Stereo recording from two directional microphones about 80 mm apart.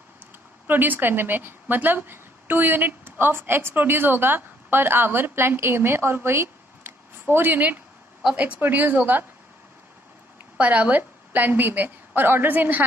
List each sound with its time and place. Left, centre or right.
0.7 s a woman's voice: right
10.6 s a woman's voice: centre